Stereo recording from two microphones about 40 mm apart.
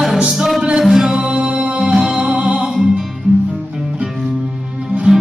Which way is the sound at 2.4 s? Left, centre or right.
Centre.